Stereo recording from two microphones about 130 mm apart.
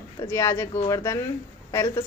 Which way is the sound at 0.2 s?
20° left (ahead or behind).